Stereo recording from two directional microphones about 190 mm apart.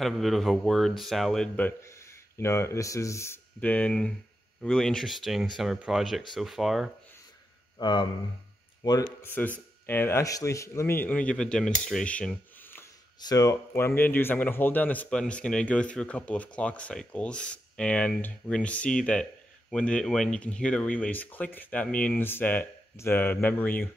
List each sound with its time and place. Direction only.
0.0 s speech: centre (ahead or behind)
1.8 s speech: 15° left (ahead or behind); by 6.9 s centre (ahead or behind)
7.8 s speech: 25° left (ahead or behind); by 12.8 s 10° left (ahead or behind)
13.2 s speech: 20° left (ahead or behind)